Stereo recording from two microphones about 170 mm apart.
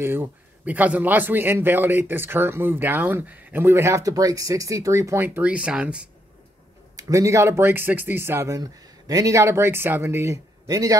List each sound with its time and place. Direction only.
0.0 s a man's voice: 10° right (ahead or behind)
7.0 s a man's voice: 20° right (ahead or behind)